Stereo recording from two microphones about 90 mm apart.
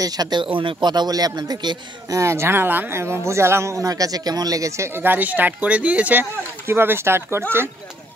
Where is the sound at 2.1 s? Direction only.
30° right (ahead or behind).